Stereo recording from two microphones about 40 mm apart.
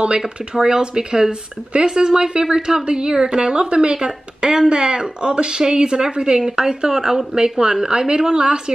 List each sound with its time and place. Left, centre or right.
0.6 s a woman's voice: centre